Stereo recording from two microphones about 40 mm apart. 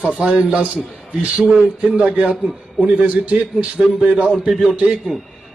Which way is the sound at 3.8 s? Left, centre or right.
Right.